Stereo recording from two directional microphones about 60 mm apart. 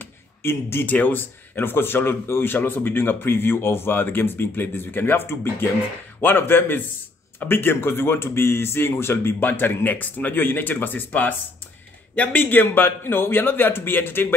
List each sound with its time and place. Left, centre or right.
0.4 s speech: left